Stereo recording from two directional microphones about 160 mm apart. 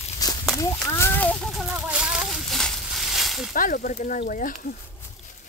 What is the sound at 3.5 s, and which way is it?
Speech, 60° left (ahead or behind).